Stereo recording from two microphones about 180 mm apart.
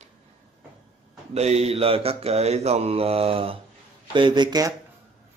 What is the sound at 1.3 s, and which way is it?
Mantra, 35° right (ahead or behind).